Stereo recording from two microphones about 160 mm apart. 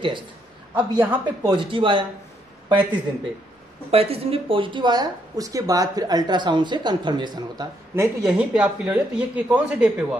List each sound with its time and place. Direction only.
0.7 s speech: 10° right (ahead or behind)
1.4 s speech: 30° right (ahead or behind)
8.2 s speech: 5° right (ahead or behind)